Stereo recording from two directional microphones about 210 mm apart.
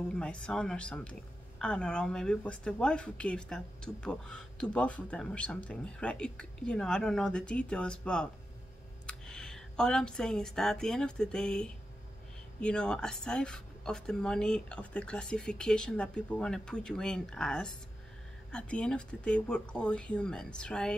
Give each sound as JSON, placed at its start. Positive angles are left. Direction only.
{"t": 0.1, "sound": "speech", "side_deg": 5}